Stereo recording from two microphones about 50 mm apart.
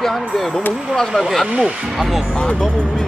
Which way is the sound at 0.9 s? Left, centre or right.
Centre.